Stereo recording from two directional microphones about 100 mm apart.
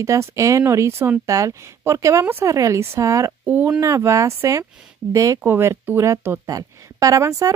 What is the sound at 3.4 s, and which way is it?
Speech, 20° right (ahead or behind).